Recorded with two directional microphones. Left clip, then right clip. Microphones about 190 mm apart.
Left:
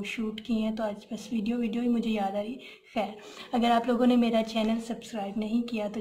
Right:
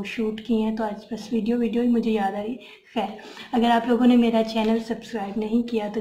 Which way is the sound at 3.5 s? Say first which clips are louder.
Right 5 dB; 45° left (ahead or behind).